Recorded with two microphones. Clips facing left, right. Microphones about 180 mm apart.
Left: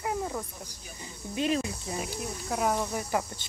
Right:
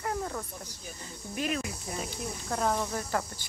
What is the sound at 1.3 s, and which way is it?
Speech, 25° left (ahead or behind).